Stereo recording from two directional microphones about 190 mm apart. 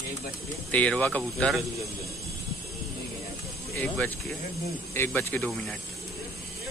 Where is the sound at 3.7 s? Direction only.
10° left (ahead or behind).